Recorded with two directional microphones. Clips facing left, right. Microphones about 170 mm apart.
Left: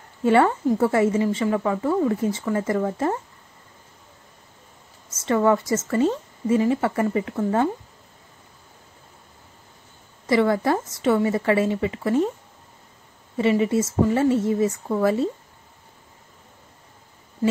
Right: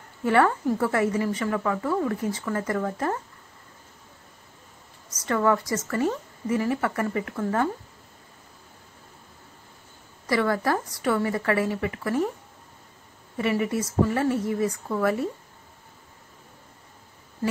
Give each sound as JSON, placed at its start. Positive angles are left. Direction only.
{"t": 0.2, "sound": "a woman's voice", "side_deg": 25}
{"t": 5.1, "sound": "a woman's voice", "side_deg": 25}
{"t": 10.2, "sound": "a woman's voice", "side_deg": 25}
{"t": 13.4, "sound": "a woman's voice", "side_deg": 25}